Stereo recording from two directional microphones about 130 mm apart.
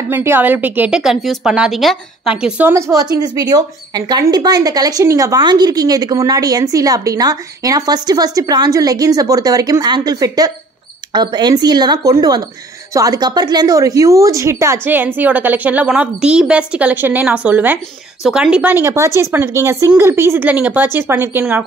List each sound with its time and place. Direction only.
0.1 s speech: 15° right (ahead or behind)
2.7 s a woman's voice: 25° right (ahead or behind)